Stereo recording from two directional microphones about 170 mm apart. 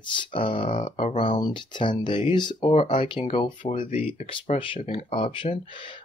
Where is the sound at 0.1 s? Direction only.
30° left (ahead or behind).